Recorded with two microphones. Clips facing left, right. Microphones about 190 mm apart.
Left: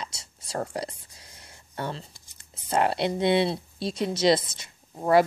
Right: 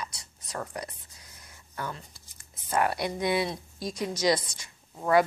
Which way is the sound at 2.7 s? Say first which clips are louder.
Left 3 dB; 25° left (ahead or behind).